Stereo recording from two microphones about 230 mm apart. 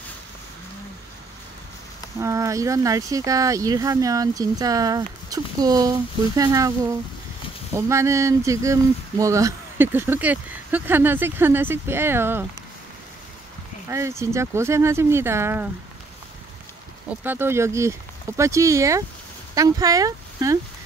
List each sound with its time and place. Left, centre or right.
2.1 s speech: centre
13.8 s speech: centre
17.2 s speech: centre